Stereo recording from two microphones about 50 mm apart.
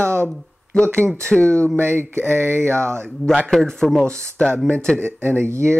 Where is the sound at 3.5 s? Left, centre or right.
Centre.